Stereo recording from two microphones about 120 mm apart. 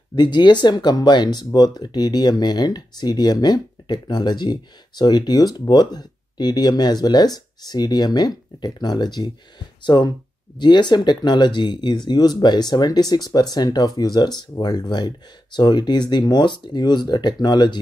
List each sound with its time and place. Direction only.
0.1 s speech: 40° left (ahead or behind)